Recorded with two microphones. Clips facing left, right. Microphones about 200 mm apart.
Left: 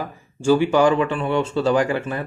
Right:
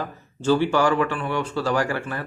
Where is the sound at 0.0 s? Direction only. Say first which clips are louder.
Left 3 dB; 10° left (ahead or behind).